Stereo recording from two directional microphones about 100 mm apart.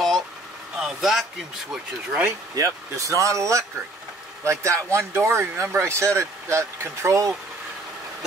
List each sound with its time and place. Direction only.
0.7 s a sound: 5° right (ahead or behind)
1.7 s speech: 5° right (ahead or behind)
2.5 s speech: 30° right (ahead or behind)